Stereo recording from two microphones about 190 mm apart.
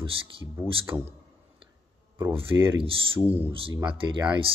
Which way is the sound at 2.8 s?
30° right (ahead or behind).